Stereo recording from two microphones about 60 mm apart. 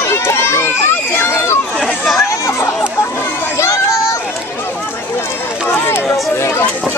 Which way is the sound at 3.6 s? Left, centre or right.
Left.